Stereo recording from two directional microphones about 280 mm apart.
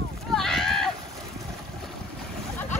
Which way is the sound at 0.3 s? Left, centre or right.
Centre.